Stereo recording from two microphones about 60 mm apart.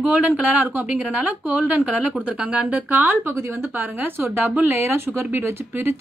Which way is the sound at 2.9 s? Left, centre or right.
Right.